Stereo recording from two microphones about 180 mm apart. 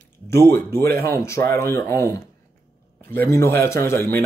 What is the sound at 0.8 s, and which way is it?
Speech, 60° right (ahead or behind).